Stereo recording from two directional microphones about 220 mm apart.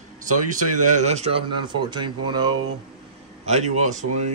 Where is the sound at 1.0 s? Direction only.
30° right (ahead or behind).